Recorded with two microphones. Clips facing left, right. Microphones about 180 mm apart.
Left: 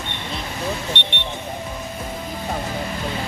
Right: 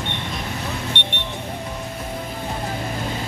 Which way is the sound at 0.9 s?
55° right (ahead or behind).